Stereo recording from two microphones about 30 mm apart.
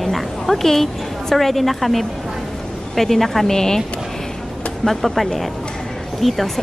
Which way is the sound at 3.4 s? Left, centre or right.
Centre.